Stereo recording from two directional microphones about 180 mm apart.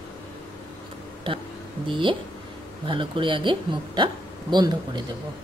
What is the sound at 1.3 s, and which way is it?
Speech, 30° right (ahead or behind).